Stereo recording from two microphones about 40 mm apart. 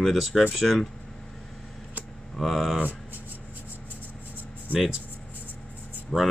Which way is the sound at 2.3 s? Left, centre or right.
Centre.